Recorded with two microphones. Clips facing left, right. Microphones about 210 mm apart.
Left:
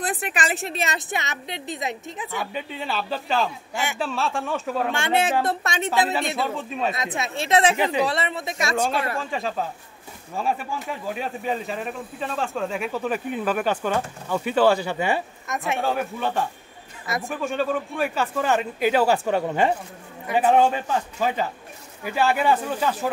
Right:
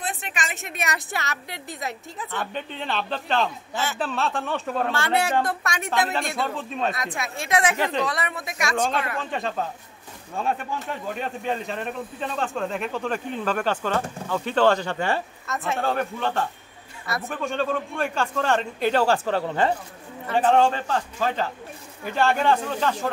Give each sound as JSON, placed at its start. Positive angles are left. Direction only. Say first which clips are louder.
{"t": 0.6, "sound": "a woman's voice", "louder": "left 4 dB", "side_deg": 35}
{"t": 0.9, "sound": "a woman's voice", "louder": "left 1 dB", "side_deg": 20}
{"t": 2.4, "sound": "speech", "louder": "left 1 dB", "side_deg": 5}
{"t": 3.7, "sound": "speech", "louder": "even", "side_deg": 15}
{"t": 4.0, "sound": "speech", "louder": "left 1 dB", "side_deg": 0}
{"t": 4.9, "sound": "a woman's voice", "louder": "left 1 dB", "side_deg": 20}
{"t": 5.9, "sound": "speech", "louder": "left 2 dB", "side_deg": 0}
{"t": 7.2, "sound": "a woman's voice", "louder": "left 5 dB", "side_deg": 25}
{"t": 7.7, "sound": "speech", "louder": "left 3 dB", "side_deg": 10}
{"t": 8.1, "sound": "a woman's voice", "louder": "left 3 dB", "side_deg": 25}
{"t": 9.2, "sound": "speech", "louder": "left 1 dB", "side_deg": 0}
{"t": 15.8, "sound": "speech", "louder": "right 1 dB", "side_deg": 5}